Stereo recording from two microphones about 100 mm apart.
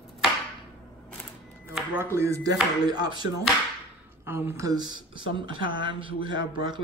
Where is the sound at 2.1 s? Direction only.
30° right (ahead or behind).